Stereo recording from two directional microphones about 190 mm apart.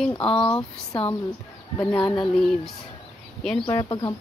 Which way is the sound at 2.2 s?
Centre (ahead or behind).